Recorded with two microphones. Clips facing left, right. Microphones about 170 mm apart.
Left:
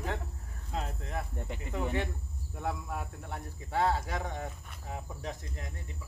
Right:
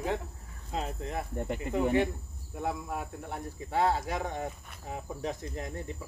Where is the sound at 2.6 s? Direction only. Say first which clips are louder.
Right 2 dB; 15° right (ahead or behind).